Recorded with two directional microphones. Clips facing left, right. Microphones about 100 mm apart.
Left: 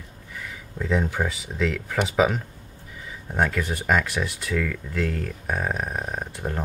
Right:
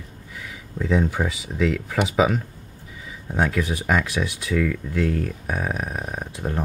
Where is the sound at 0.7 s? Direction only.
5° right (ahead or behind).